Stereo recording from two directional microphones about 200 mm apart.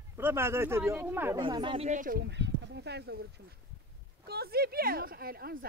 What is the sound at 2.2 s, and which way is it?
Speech, 60° right (ahead or behind).